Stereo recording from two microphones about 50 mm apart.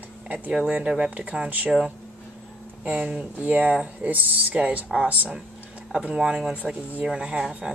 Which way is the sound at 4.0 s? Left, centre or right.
Right.